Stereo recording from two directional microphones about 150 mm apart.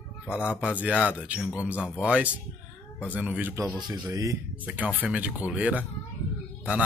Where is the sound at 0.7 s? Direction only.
10° right (ahead or behind).